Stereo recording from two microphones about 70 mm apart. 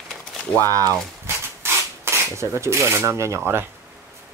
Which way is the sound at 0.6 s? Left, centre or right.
Right.